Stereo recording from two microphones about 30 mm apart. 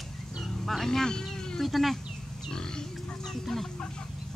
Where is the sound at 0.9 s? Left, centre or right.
Centre.